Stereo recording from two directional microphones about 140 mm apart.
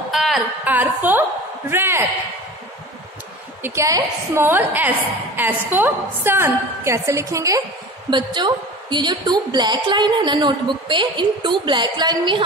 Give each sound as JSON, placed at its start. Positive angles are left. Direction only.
{"t": 0.1, "sound": "a sound", "side_deg": 0}
{"t": 0.7, "sound": "a woman's voice", "side_deg": -15}
{"t": 3.6, "sound": "a woman's voice", "side_deg": -20}
{"t": 8.1, "sound": "a woman's voice", "side_deg": -35}